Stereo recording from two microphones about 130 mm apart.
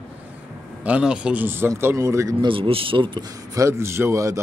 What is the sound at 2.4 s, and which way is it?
Speech, 45° right (ahead or behind).